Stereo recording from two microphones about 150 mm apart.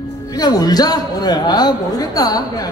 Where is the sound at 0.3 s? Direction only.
25° left (ahead or behind).